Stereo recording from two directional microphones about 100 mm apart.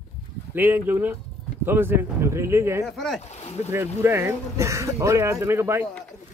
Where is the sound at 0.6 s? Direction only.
20° right (ahead or behind).